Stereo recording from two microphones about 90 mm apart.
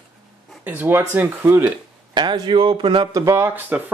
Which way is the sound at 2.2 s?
55° right (ahead or behind).